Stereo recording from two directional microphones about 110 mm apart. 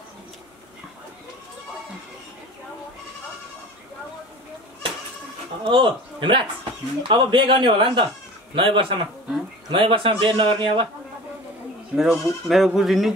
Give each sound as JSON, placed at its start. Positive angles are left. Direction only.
{"t": 5.7, "sound": "a man's voice", "side_deg": -50}
{"t": 11.9, "sound": "speech", "side_deg": -5}